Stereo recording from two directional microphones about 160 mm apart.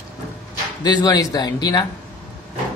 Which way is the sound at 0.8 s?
25° left (ahead or behind).